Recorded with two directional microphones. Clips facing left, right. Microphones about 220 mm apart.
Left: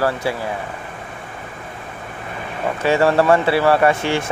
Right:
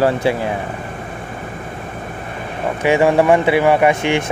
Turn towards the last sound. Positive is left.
turn(degrees=-20)  # may be behind; listen again after turning